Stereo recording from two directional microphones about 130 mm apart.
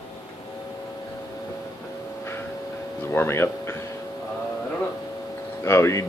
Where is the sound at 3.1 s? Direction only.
20° left (ahead or behind).